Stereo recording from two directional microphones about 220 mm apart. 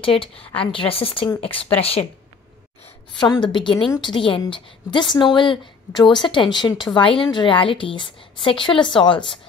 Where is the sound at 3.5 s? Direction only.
20° left (ahead or behind).